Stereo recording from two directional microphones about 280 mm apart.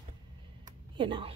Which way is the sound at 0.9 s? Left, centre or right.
Centre.